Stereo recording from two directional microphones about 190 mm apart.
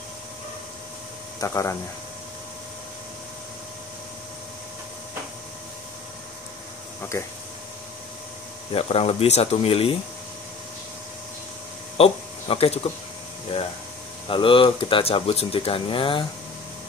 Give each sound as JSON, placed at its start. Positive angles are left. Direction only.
{"t": 1.4, "sound": "speech", "side_deg": 15}
{"t": 7.1, "sound": "speech", "side_deg": 15}
{"t": 8.7, "sound": "speech", "side_deg": 30}
{"t": 12.0, "sound": "speech", "side_deg": 30}
{"t": 14.2, "sound": "speech", "side_deg": 25}